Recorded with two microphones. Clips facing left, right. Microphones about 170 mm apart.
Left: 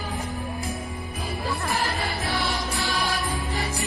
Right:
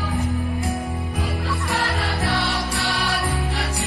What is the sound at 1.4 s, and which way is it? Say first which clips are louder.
Music: left 1 dB; 70° right (ahead or behind).